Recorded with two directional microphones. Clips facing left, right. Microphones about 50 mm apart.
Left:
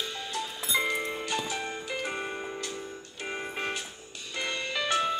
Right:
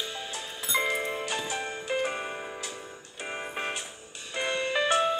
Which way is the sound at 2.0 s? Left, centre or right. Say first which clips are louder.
Right 1 dB; centre.